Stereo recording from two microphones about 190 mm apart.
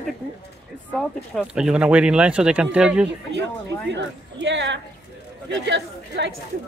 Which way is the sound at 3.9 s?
70° right (ahead or behind).